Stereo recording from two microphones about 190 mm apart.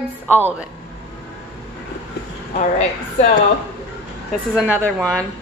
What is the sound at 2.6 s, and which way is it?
Speech, 35° left (ahead or behind).